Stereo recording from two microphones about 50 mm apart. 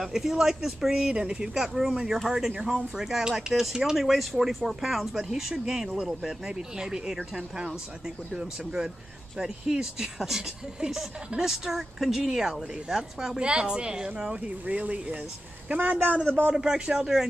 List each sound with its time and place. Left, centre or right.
0.0 s speech: centre
14.8 s a man's voice: right
16.5 s speech: centre